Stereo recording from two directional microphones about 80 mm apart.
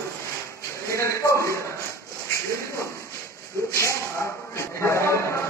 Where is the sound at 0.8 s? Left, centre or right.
Left.